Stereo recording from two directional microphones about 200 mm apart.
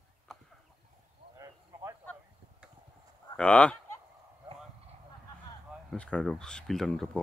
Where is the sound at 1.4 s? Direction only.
15° right (ahead or behind).